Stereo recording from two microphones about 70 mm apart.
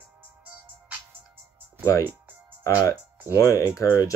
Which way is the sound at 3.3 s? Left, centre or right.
Left.